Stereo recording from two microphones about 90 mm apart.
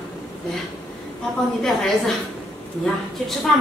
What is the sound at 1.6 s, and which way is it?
Speech, 5° left (ahead or behind).